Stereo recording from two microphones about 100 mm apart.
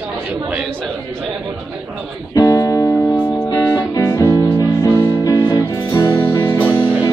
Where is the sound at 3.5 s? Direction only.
35° left (ahead or behind).